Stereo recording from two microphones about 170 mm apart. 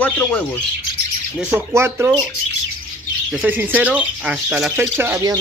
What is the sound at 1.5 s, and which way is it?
Speech, 15° right (ahead or behind).